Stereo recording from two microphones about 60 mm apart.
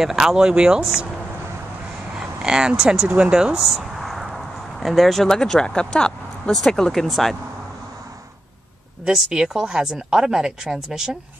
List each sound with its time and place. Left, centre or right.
0.0 s speech: centre
2.1 s a sound: centre
3.2 s speech: centre
3.6 s a sound: centre
6.5 s speech: centre
9.0 s speech: centre